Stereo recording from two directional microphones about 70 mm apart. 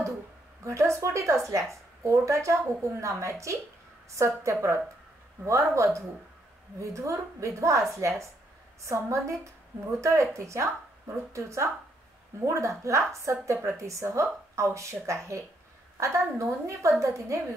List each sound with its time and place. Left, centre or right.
0.7 s a woman's voice: right
8.8 s a woman's voice: right